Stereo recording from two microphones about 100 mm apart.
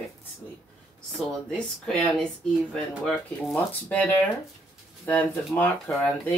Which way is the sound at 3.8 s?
15° left (ahead or behind).